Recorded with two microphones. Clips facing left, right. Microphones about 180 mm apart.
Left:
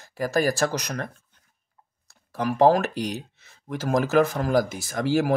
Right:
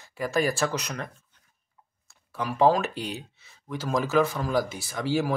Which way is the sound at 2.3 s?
45° left (ahead or behind).